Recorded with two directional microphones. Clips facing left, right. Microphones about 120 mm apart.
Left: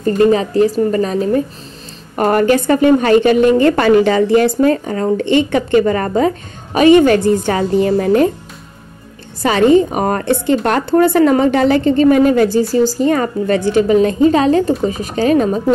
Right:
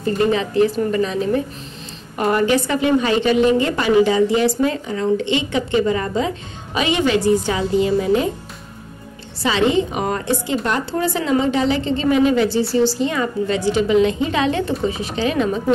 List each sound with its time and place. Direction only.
0.0 s a woman's voice: 40° left (ahead or behind)
9.4 s a woman's voice: 50° left (ahead or behind)